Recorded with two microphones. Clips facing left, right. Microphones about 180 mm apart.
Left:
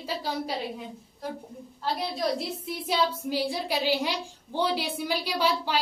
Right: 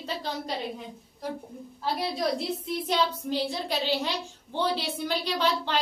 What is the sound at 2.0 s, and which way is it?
A woman's voice, centre (ahead or behind).